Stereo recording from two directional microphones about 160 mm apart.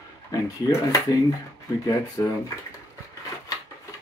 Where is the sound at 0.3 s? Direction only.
20° left (ahead or behind).